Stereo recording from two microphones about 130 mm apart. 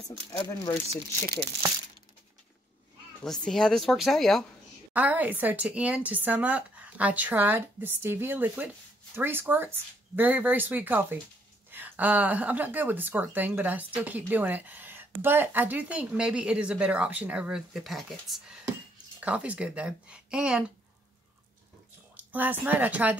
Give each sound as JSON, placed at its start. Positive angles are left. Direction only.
{"t": 0.3, "sound": "speech", "side_deg": 30}
{"t": 3.3, "sound": "speech", "side_deg": 5}
{"t": 4.9, "sound": "a woman's voice", "side_deg": -15}
{"t": 22.1, "sound": "a woman's voice", "side_deg": -15}